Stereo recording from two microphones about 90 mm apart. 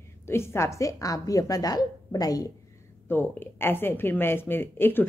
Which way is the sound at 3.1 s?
25° left (ahead or behind).